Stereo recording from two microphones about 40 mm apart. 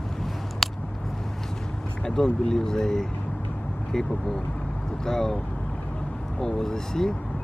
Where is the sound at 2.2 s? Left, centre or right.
Centre.